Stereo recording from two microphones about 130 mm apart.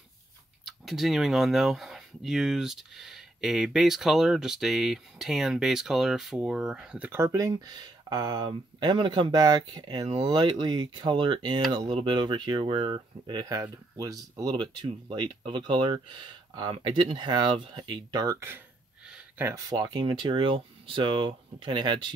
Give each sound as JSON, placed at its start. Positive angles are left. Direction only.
{"t": 0.7, "sound": "speech", "side_deg": 0}
{"t": 19.0, "sound": "a sound", "side_deg": -5}
{"t": 19.4, "sound": "speech", "side_deg": -25}